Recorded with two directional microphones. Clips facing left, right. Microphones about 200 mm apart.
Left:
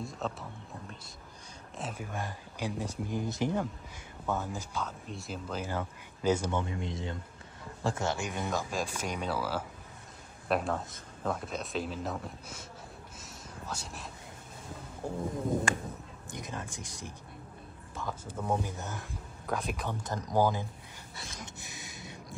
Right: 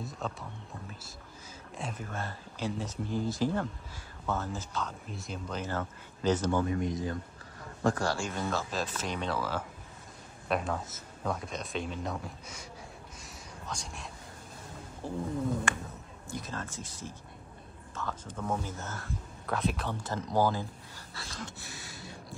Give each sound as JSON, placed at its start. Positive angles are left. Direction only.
{"t": 0.0, "sound": "music", "side_deg": 0}
{"t": 1.8, "sound": "speech", "side_deg": 5}
{"t": 5.0, "sound": "speech", "side_deg": 0}
{"t": 6.6, "sound": "a man's voice", "side_deg": 25}
{"t": 13.2, "sound": "whispering", "side_deg": 5}
{"t": 16.3, "sound": "speech", "side_deg": 15}
{"t": 21.1, "sound": "a sound", "side_deg": 20}